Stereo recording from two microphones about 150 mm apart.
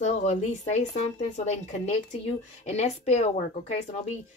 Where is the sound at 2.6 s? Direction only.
45° left (ahead or behind).